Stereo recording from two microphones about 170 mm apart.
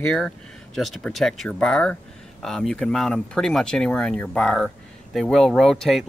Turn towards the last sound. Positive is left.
turn(degrees=0)  # may be behind; listen again after turning